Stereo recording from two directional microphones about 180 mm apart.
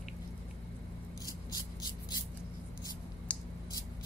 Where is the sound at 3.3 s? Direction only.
5° left (ahead or behind).